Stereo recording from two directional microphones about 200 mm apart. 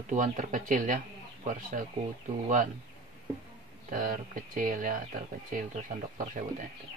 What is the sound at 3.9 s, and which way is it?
Speech, 45° right (ahead or behind).